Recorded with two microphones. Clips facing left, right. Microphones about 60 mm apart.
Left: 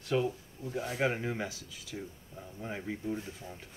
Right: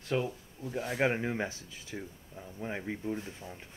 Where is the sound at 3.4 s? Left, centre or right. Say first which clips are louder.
Right 1 dB; right.